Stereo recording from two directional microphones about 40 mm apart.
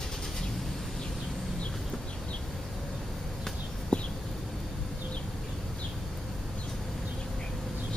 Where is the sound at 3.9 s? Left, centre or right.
Left.